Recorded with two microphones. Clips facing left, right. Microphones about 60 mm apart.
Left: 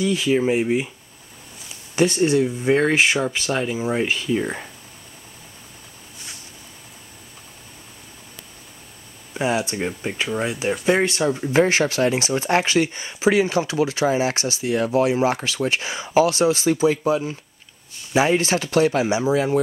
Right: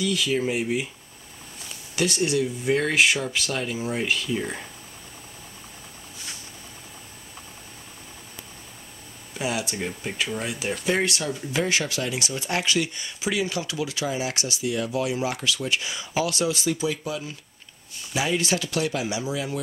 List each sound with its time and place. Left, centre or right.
0.0 s speech: left
2.0 s speech: left
9.3 s speech: left
11.1 s speech: left